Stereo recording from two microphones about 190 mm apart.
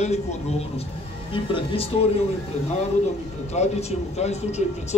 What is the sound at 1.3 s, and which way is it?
Speech, 30° left (ahead or behind).